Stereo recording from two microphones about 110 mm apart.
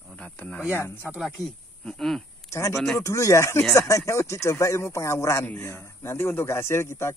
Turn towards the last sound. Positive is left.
turn(degrees=25)  # may be behind; listen again after turning